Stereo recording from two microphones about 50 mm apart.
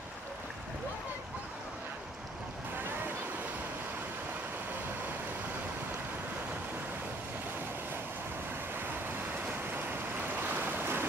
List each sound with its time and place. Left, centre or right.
10.3 s stream: right